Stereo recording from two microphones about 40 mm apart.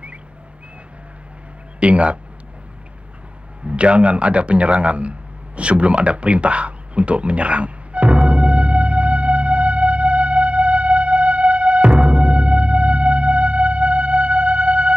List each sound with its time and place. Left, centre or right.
1.8 s a man's voice: right
3.6 s a man's voice: right
5.6 s a sound: right
11.9 s music: right